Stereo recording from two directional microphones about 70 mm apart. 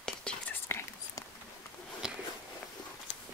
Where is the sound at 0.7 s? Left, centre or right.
Left.